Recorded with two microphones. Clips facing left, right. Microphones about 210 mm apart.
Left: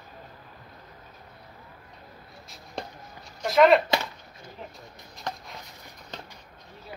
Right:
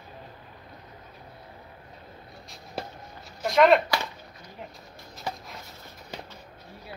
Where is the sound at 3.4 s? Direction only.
Centre (ahead or behind).